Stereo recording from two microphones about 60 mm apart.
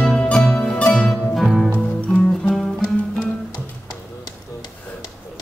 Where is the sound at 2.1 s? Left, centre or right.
Centre.